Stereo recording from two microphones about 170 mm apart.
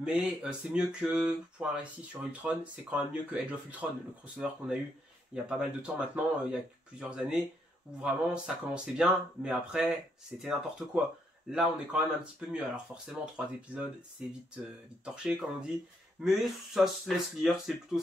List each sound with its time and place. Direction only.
0.0 s speech: 5° right (ahead or behind)
11.5 s speech: 5° right (ahead or behind)